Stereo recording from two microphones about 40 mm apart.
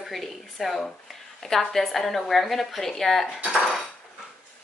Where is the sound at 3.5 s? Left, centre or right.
Centre.